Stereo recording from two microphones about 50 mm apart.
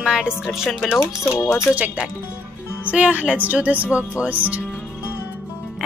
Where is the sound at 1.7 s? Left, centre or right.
Right.